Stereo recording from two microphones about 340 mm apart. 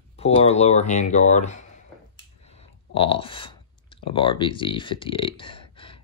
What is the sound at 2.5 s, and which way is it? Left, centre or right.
Clicking, centre.